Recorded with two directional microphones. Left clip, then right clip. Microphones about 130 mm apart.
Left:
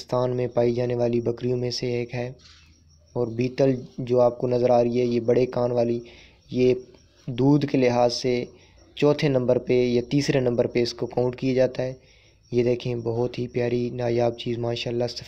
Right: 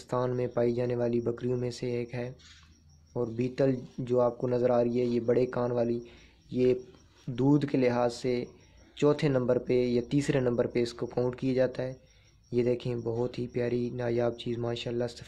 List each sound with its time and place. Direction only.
0.0 s speech: 15° left (ahead or behind)